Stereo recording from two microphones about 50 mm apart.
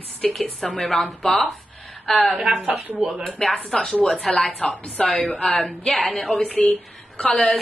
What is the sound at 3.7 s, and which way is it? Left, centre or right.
Speech, centre.